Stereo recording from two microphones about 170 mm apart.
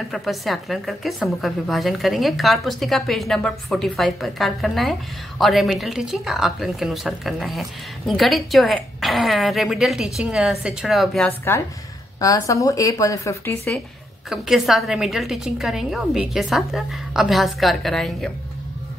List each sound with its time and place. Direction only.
0.1 s a woman's voice: centre (ahead or behind)
12.2 s a woman's voice: 20° left (ahead or behind)
14.3 s a woman's voice: 5° right (ahead or behind)